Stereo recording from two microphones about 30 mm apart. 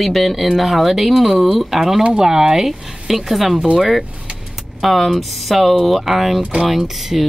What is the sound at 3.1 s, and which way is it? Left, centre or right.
Speech, centre.